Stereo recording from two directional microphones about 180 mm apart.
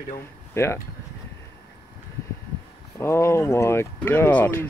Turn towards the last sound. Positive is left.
turn(degrees=10)  # may be behind; listen again after turning